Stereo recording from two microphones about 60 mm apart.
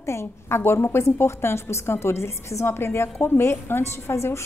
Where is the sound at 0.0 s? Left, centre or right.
Left.